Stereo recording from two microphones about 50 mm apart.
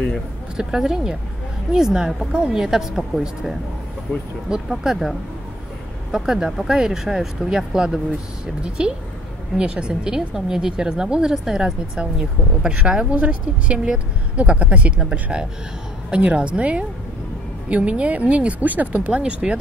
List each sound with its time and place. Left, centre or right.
0.6 s a woman's voice: centre
6.1 s a woman's voice: centre